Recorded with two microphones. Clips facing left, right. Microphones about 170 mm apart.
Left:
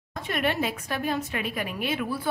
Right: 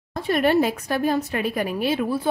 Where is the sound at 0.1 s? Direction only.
35° right (ahead or behind).